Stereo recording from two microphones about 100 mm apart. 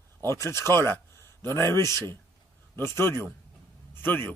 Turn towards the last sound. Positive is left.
turn(degrees=20)  # may be behind; listen again after turning